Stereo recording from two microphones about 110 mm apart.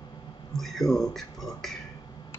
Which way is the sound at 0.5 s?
5° left (ahead or behind).